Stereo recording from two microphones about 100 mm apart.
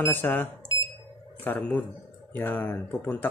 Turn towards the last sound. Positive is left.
turn(degrees=15)  # may be behind; listen again after turning